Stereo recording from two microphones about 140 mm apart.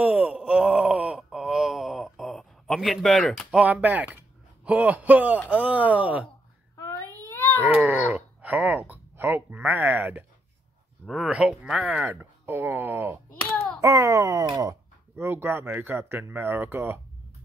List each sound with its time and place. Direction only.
0.0 s groan: 10° right (ahead or behind); by 3.4 s 5° left (ahead or behind)
3.5 s speech: 5° right (ahead or behind)
6.8 s a sound: 15° left (ahead or behind)
7.3 s baby cry: 15° left (ahead or behind)
7.6 s speech: 10° right (ahead or behind)
11.1 s speech: 5° right (ahead or behind)